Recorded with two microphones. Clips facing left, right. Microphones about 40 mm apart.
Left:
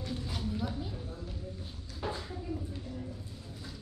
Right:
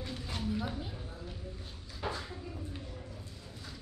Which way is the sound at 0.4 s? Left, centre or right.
Centre.